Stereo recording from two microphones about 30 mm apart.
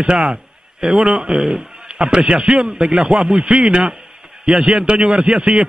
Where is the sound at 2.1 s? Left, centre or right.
Right.